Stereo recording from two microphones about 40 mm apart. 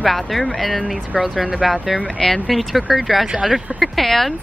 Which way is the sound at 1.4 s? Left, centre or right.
Right.